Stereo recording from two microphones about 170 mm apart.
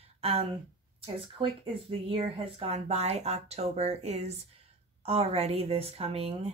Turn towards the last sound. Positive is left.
turn(degrees=-35)  # may be behind; listen again after turning